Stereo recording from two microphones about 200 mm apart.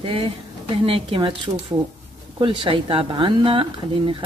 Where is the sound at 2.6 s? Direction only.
25° right (ahead or behind).